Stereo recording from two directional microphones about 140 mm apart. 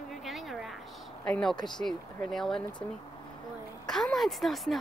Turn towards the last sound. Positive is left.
turn(degrees=0)  # may be behind; listen again after turning